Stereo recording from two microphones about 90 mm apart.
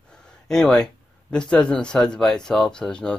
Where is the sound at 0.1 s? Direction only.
10° left (ahead or behind).